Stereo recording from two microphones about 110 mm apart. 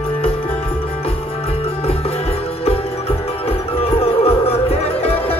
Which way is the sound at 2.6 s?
65° left (ahead or behind).